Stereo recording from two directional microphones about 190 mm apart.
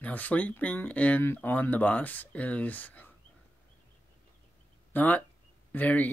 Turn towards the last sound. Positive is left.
turn(degrees=10)  # may be behind; listen again after turning